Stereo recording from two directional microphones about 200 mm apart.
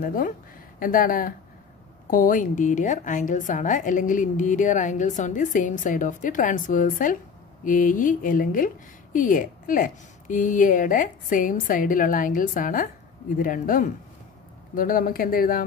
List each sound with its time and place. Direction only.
0.0 s a woman's voice: 45° left (ahead or behind)